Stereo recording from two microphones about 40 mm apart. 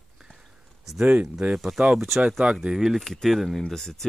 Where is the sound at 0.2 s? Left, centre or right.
Centre.